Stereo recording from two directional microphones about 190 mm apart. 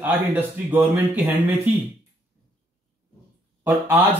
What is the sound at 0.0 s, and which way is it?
Speech, 10° right (ahead or behind).